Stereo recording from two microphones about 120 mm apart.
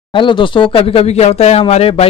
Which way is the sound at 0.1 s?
45° left (ahead or behind).